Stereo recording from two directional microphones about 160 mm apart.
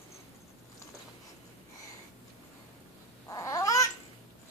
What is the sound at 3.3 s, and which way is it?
Babbling, 20° left (ahead or behind).